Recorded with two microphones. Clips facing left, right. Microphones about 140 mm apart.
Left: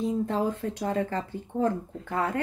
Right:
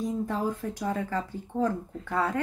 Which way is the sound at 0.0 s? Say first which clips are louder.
Left 2 dB; 65° left (ahead or behind).